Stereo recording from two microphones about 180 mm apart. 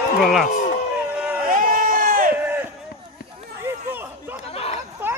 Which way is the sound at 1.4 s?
50° right (ahead or behind).